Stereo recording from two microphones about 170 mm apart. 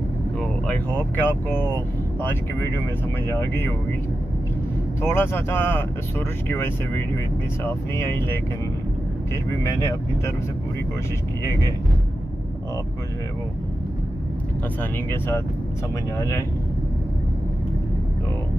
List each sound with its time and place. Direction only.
0.4 s speech: 10° left (ahead or behind)
5.0 s speech: 15° left (ahead or behind)
9.5 s speech: 20° left (ahead or behind)
14.8 s speech: 15° left (ahead or behind)